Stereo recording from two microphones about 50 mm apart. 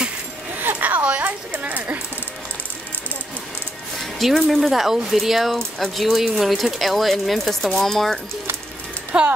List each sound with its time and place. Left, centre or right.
0.6 s a sound: right
4.0 s music: centre
4.6 s speech: centre
9.1 s speech: right